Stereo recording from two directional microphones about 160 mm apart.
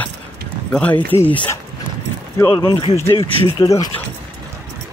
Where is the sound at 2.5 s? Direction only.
30° left (ahead or behind).